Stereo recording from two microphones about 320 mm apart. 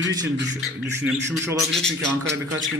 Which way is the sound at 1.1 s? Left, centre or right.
Centre.